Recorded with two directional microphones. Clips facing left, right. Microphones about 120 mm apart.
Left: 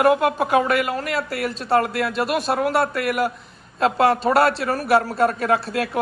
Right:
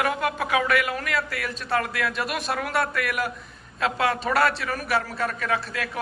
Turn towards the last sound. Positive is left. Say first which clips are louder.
# left 7 dB
turn(degrees=40)  # may be behind; listen again after turning